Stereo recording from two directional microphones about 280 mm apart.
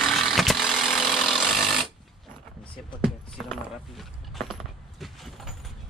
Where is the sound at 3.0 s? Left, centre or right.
Centre.